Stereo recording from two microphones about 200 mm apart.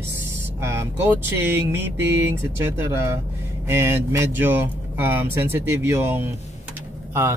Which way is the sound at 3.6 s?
15° right (ahead or behind).